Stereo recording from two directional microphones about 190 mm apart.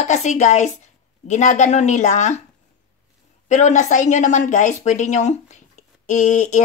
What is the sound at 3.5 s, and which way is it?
A woman's voice, 40° left (ahead or behind).